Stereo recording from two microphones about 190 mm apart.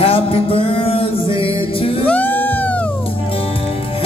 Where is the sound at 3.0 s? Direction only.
30° left (ahead or behind).